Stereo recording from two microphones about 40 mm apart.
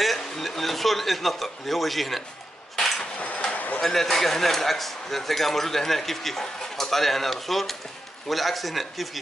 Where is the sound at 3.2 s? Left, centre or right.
Left.